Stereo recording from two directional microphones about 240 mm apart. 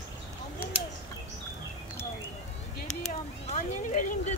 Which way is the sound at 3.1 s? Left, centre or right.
Left.